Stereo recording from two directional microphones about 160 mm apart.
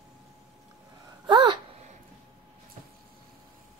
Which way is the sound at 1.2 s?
30° right (ahead or behind).